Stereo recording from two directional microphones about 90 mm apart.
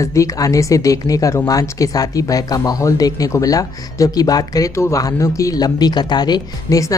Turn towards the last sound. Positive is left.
turn(degrees=45)  # may be behind; listen again after turning